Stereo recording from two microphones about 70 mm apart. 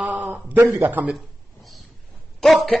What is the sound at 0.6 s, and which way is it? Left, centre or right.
Speech, right.